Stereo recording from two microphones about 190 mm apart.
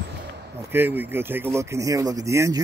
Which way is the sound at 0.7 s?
10° right (ahead or behind).